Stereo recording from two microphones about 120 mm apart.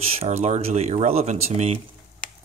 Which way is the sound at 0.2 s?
75° right (ahead or behind).